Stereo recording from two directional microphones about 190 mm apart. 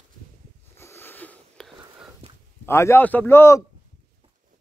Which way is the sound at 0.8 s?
15° left (ahead or behind).